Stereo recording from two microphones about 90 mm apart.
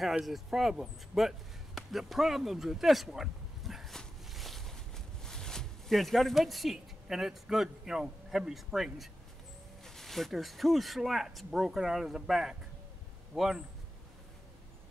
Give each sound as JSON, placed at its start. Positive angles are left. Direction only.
{"t": 0.2, "sound": "speech", "side_deg": 0}
{"t": 1.8, "sound": "a sound", "side_deg": 0}
{"t": 9.8, "sound": "speech", "side_deg": 5}